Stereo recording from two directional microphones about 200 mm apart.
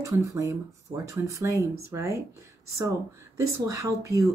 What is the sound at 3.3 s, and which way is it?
Speech, 15° right (ahead or behind).